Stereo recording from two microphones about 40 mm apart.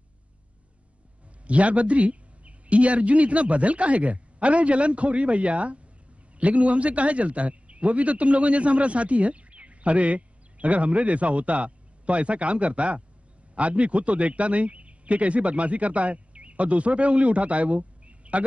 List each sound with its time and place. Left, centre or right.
1.4 s a man's voice: right